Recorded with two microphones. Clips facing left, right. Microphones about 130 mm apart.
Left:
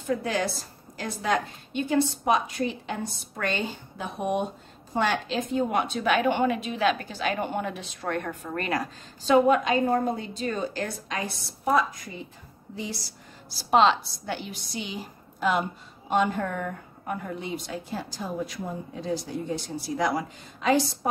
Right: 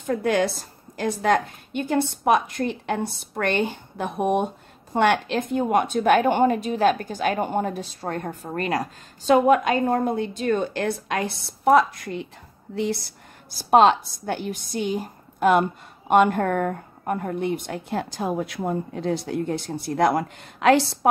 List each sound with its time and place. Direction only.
0.0 s a woman's voice: 55° right (ahead or behind); by 12.3 s 70° right (ahead or behind)
12.7 s a woman's voice: 60° right (ahead or behind)